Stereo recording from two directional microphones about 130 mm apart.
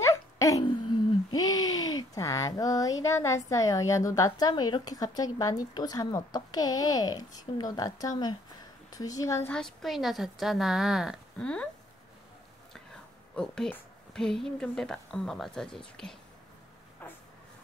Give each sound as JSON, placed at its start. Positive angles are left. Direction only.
{"t": 0.0, "sound": "a sound", "side_deg": 25}
{"t": 1.3, "sound": "speech", "side_deg": 30}
{"t": 9.5, "sound": "a woman's voice", "side_deg": 5}
{"t": 11.4, "sound": "speech", "side_deg": 10}
{"t": 13.4, "sound": "a woman's voice", "side_deg": 5}
{"t": 17.0, "sound": "a sound", "side_deg": 15}